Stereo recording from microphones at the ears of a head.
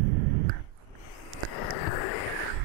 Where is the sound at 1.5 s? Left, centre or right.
Left.